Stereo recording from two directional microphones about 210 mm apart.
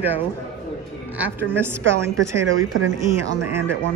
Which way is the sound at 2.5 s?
70° right (ahead or behind).